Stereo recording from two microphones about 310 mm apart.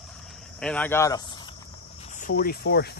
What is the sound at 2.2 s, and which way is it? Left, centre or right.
Speech, left.